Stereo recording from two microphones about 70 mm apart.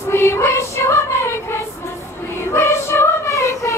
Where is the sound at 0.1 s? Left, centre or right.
Left.